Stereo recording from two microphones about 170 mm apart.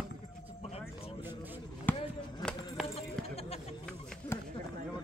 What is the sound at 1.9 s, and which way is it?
Basketball bounce, 10° left (ahead or behind).